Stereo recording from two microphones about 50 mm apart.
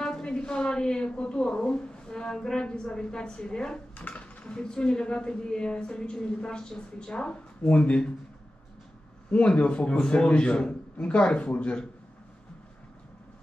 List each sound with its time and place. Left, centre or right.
0.0 s a woman's voice: centre
9.6 s a man's voice: left